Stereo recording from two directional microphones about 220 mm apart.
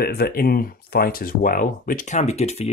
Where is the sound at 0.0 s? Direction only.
45° left (ahead or behind).